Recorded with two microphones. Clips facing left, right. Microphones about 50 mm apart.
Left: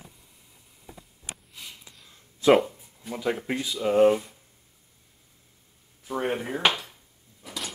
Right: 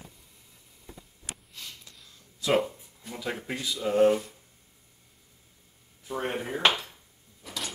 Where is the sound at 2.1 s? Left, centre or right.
Left.